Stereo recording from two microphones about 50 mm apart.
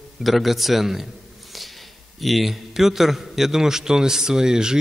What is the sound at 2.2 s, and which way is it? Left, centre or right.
A man's voice, centre.